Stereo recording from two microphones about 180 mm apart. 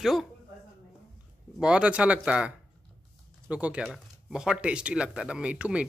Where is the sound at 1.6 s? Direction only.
5° right (ahead or behind).